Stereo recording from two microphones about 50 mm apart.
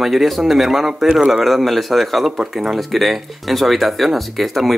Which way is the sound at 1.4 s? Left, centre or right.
Centre.